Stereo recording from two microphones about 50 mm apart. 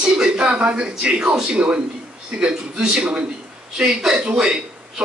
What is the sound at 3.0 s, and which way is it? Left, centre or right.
Speech, right.